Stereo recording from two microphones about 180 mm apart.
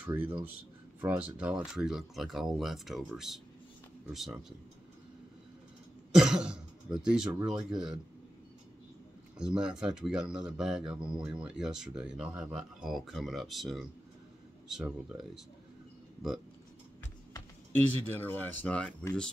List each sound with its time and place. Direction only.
0.0 s speech: 10° right (ahead or behind)
6.1 s speech: 5° right (ahead or behind)
9.4 s speech: 5° right (ahead or behind)
18.0 s speech: 10° left (ahead or behind)